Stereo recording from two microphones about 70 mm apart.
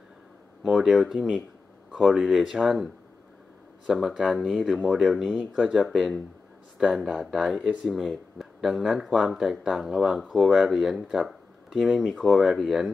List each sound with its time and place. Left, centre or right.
0.7 s speech: centre